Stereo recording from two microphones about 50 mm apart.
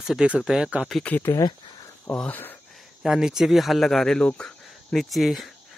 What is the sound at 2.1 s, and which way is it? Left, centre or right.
Speech, left.